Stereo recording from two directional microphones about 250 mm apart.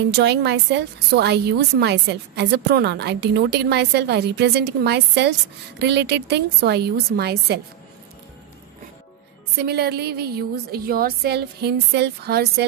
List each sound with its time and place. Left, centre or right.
0.1 s a woman's voice: right
9.6 s a woman's voice: right